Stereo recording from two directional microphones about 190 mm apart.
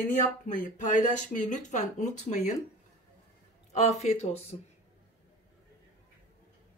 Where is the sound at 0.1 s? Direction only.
45° left (ahead or behind).